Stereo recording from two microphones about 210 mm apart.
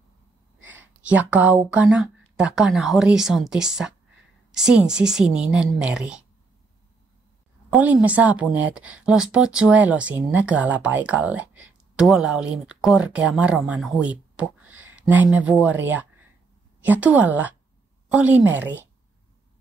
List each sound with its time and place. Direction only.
0.7 s speech: 5° right (ahead or behind)
7.7 s a woman's voice: 5° right (ahead or behind)
14.7 s a sound: 70° right (ahead or behind)
15.0 s a woman's voice: 5° right (ahead or behind)